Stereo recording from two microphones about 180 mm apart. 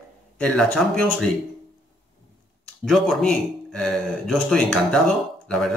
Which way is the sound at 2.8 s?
5° left (ahead or behind).